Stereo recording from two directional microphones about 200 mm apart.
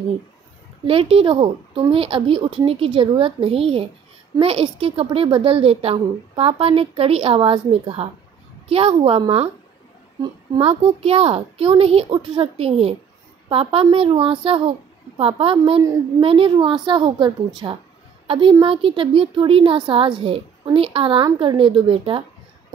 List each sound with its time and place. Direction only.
0.8 s a woman's voice: 30° right (ahead or behind)